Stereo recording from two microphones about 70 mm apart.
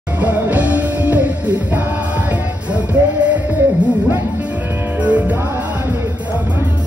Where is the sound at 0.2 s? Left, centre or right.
Right.